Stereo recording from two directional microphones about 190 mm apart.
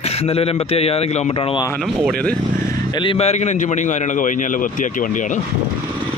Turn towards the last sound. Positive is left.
turn(degrees=40)  # may be behind; listen again after turning